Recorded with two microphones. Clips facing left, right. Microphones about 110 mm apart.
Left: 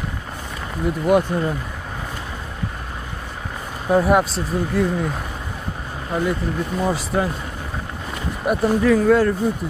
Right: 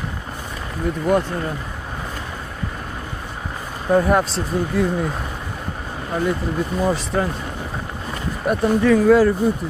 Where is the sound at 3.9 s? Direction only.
5° left (ahead or behind).